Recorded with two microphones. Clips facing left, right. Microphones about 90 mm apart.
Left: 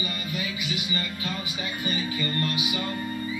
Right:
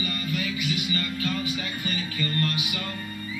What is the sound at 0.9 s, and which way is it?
Music, 20° left (ahead or behind).